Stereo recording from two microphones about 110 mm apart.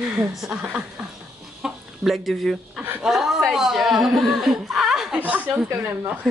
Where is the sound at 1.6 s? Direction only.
5° right (ahead or behind).